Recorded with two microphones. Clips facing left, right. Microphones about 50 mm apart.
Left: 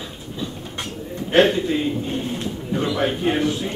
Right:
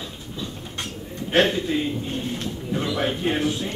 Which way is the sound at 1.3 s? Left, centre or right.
Centre.